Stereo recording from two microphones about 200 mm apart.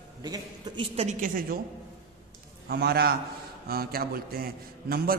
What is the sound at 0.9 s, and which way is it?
Speech, 35° right (ahead or behind).